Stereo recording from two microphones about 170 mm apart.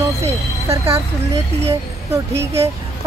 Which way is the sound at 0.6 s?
15° right (ahead or behind).